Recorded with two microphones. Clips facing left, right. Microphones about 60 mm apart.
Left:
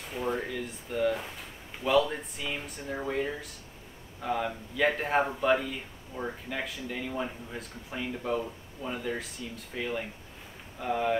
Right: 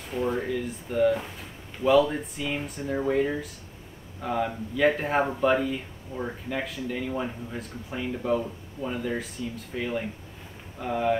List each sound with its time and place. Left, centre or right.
0.1 s speech: centre